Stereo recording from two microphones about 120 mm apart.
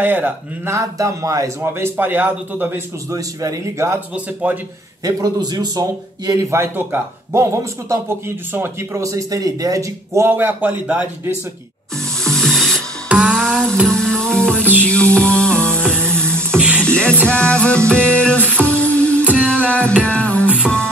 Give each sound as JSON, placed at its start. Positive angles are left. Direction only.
{"t": 0.0, "sound": "speech", "side_deg": -15}
{"t": 0.7, "sound": "a man's voice", "side_deg": -25}
{"t": 3.1, "sound": "a man's voice", "side_deg": -30}
{"t": 4.1, "sound": "speech", "side_deg": -10}
{"t": 5.0, "sound": "a man's voice", "side_deg": -35}
{"t": 12.2, "sound": "music", "side_deg": 5}
{"t": 13.1, "sound": "music", "side_deg": -5}
{"t": 13.4, "sound": "music", "side_deg": 5}